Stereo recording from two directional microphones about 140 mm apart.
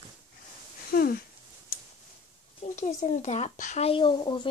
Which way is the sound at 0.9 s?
90° left.